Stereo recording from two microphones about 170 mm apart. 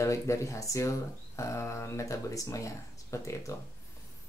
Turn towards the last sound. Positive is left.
turn(degrees=20)  # may be behind; listen again after turning